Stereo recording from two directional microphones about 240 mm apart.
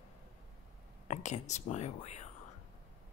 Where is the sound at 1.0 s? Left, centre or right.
Left.